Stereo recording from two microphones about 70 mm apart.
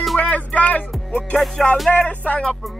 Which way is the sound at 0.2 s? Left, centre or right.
Left.